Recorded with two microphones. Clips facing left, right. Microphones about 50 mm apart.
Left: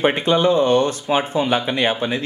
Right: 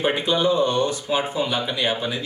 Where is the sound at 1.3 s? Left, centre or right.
Left.